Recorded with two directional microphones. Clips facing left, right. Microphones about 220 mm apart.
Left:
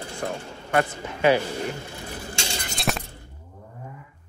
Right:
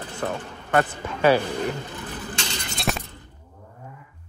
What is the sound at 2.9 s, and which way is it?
Shatter, centre (ahead or behind).